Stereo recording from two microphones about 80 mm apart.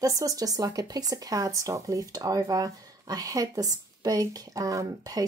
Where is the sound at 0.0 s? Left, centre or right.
Right.